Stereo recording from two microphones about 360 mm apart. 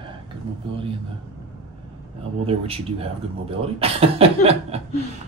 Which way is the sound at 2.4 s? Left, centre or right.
Centre.